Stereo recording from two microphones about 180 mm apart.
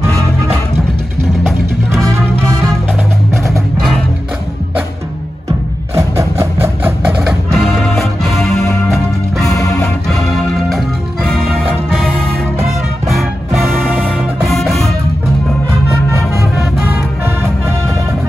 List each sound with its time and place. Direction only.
2.1 s music: 15° right (ahead or behind)
5.9 s music: 15° right (ahead or behind)
7.5 s music: centre (ahead or behind)
9.5 s music: 15° left (ahead or behind)
9.8 s music: centre (ahead or behind)
13.0 s music: centre (ahead or behind)
17.2 s music: 15° right (ahead or behind)